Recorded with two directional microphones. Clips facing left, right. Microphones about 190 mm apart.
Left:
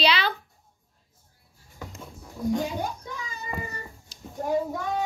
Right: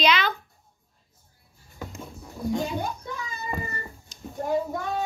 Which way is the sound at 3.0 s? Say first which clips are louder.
Right 2 dB; 10° left (ahead or behind).